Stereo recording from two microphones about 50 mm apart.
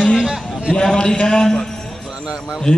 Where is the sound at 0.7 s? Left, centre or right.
Centre.